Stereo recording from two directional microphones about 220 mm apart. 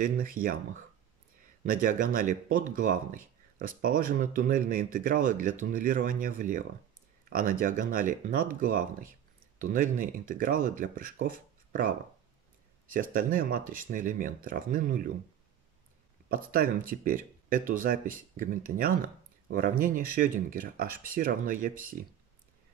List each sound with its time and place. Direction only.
0.0 s speech: 40° right (ahead or behind)
1.6 s speech: 40° right (ahead or behind)
12.9 s speech: 40° right (ahead or behind)
16.3 s speech: 40° right (ahead or behind)